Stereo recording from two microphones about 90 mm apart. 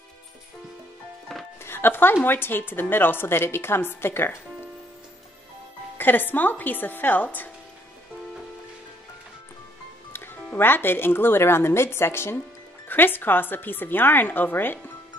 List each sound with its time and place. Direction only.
1.6 s music: 25° left (ahead or behind)
2.2 s a woman's voice: 25° left (ahead or behind)
5.9 s a woman's voice: 20° left (ahead or behind)
10.1 s a woman's voice: 25° left (ahead or behind)